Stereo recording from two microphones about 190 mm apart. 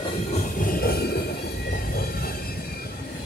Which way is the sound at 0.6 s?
50° left (ahead or behind).